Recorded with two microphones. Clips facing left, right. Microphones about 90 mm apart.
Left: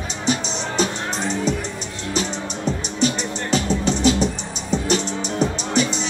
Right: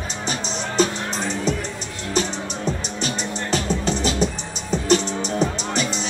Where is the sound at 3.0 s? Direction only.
40° right (ahead or behind).